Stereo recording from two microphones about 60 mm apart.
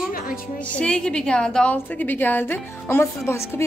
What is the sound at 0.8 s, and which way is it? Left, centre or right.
Speech, centre.